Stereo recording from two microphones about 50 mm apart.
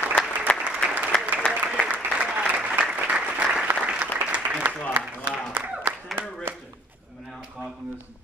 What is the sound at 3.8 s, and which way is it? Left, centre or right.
Applause, right.